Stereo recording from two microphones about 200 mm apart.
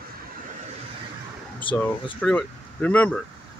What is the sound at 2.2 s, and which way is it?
Speech, 5° left (ahead or behind).